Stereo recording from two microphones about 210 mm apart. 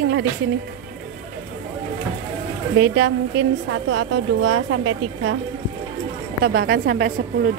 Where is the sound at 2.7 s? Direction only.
60° right (ahead or behind).